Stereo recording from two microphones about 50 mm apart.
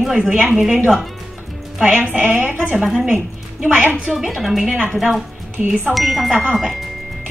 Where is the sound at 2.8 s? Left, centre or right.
Centre.